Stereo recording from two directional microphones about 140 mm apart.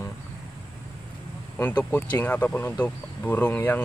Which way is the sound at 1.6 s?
15° left (ahead or behind).